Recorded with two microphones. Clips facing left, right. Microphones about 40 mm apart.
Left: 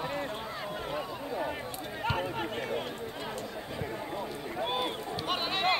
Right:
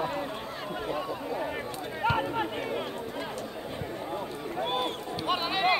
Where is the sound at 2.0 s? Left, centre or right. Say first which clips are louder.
Right 5 dB; centre.